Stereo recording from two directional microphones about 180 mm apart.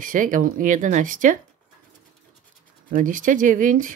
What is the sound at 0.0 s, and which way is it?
Speech, 50° right (ahead or behind).